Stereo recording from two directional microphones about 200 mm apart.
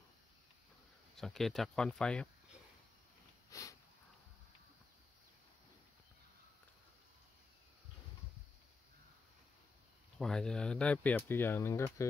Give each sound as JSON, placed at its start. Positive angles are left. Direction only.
{"t": 1.1, "sound": "speech", "side_deg": 0}
{"t": 3.4, "sound": "sniff", "side_deg": 15}
{"t": 10.1, "sound": "speech", "side_deg": 0}